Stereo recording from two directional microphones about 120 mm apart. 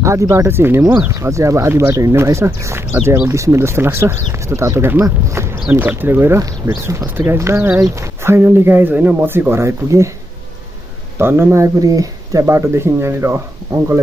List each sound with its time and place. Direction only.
0.0 s speech: 25° right (ahead or behind)
11.1 s speech: 20° right (ahead or behind)